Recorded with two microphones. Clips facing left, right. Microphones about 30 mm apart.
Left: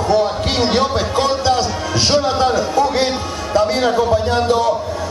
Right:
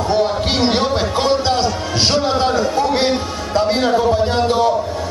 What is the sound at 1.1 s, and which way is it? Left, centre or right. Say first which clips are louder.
Music: left 1 dB; centre.